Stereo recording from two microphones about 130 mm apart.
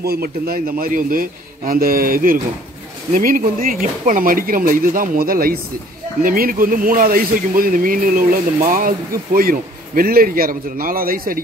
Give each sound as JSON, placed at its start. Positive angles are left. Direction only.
{"t": 0.7, "sound": "speech", "side_deg": -90}